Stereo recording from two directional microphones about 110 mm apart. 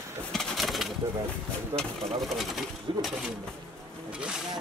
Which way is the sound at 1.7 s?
45° right (ahead or behind).